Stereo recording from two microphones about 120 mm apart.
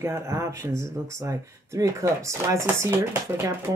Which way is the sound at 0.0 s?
25° right (ahead or behind).